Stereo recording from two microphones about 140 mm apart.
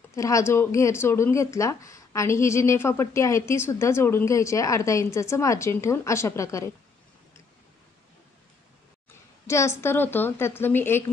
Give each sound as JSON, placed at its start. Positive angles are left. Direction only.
{"t": 0.1, "sound": "speech", "side_deg": 20}
{"t": 9.5, "sound": "a woman's voice", "side_deg": 20}